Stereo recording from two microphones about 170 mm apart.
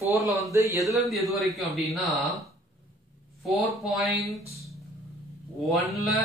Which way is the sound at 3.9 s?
Centre (ahead or behind).